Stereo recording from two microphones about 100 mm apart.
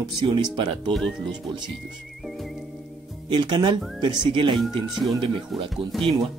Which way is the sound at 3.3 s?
50° right (ahead or behind).